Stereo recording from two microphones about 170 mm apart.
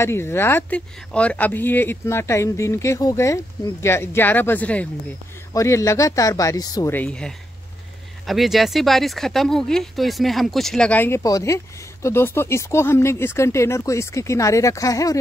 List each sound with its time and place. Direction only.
0.0 s speech: 15° left (ahead or behind)
6.9 s speech: 5° left (ahead or behind)